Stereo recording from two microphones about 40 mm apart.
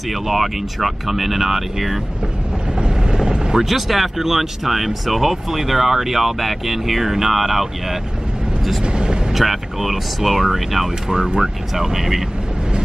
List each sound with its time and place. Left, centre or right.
0.1 s speech: centre
2.8 s vehicle: centre
3.6 s speech: centre
8.8 s speech: right
9.3 s speech: centre
11.1 s speech: centre